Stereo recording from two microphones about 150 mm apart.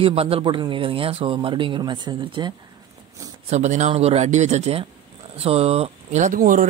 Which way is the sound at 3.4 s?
50° right (ahead or behind).